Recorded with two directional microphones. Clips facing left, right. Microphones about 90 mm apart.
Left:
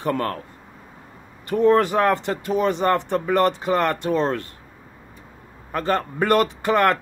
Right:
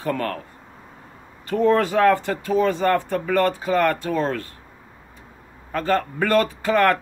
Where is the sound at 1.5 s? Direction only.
20° left (ahead or behind).